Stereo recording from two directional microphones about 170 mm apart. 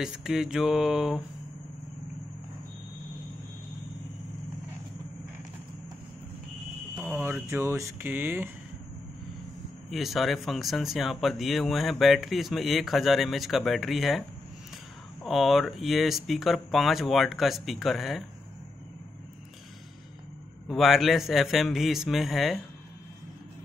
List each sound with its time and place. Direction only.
0.0 s speech: centre (ahead or behind)
7.0 s speech: 10° right (ahead or behind)
9.8 s speech: centre (ahead or behind)
15.2 s speech: centre (ahead or behind)
20.6 s speech: centre (ahead or behind)